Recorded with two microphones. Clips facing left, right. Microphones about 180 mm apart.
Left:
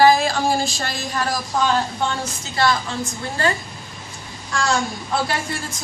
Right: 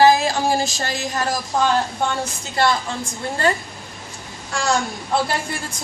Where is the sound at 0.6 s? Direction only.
40° right (ahead or behind).